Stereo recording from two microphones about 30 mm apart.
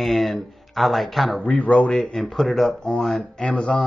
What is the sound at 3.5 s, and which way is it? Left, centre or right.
Speech, left.